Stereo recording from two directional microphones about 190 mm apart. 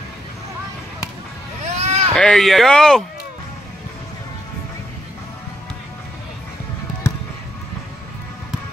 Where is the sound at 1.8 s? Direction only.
35° right (ahead or behind).